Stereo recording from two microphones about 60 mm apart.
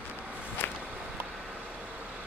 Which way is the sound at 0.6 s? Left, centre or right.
Left.